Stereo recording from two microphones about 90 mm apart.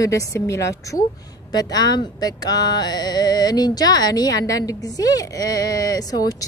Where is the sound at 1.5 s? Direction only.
45° left (ahead or behind).